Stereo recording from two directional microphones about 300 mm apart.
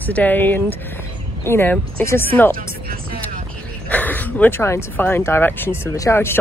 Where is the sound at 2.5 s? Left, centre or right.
Right.